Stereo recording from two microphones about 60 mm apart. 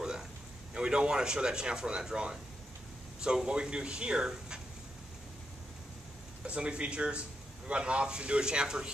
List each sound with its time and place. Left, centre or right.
0.7 s a man's voice: centre
6.4 s a man's voice: centre